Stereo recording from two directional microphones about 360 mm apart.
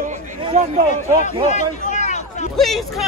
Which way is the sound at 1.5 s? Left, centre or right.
Centre.